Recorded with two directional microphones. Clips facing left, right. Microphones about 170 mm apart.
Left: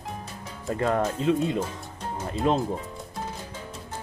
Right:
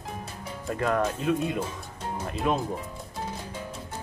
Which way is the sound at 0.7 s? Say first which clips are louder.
Left 1 dB; 30° left (ahead or behind).